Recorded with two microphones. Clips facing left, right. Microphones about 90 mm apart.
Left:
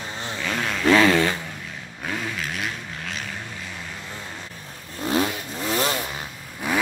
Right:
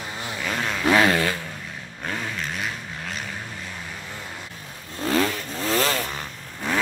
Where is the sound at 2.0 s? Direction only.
Centre (ahead or behind).